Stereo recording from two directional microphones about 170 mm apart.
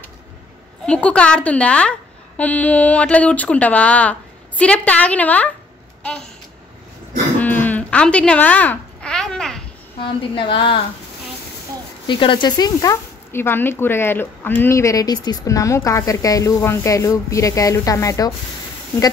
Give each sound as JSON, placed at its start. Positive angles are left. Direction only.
{"t": 0.8, "sound": "a woman's voice", "side_deg": 5}
{"t": 7.3, "sound": "babbling", "side_deg": 10}
{"t": 10.3, "sound": "a woman's voice", "side_deg": 30}
{"t": 12.1, "sound": "speech", "side_deg": 30}